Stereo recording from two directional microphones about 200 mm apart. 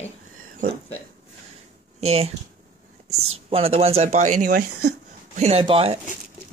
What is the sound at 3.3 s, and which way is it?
Speech, 30° right (ahead or behind).